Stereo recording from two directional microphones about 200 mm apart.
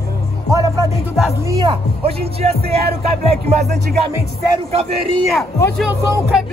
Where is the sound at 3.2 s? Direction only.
30° right (ahead or behind).